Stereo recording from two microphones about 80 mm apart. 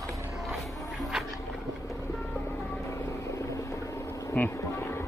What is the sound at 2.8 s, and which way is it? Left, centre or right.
Vehicle, left.